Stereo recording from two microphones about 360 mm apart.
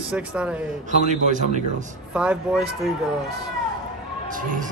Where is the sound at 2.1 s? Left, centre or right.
Centre.